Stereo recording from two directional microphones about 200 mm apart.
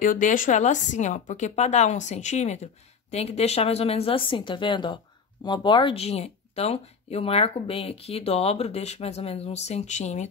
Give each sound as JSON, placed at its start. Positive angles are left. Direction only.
{"t": 0.0, "sound": "speech", "side_deg": 40}